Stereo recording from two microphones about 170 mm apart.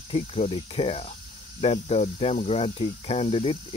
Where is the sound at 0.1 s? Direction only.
35° left (ahead or behind).